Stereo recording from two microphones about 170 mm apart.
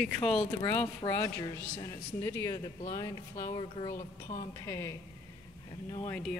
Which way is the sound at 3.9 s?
45° left (ahead or behind).